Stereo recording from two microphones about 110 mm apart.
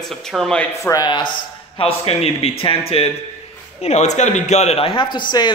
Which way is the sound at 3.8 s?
90° left.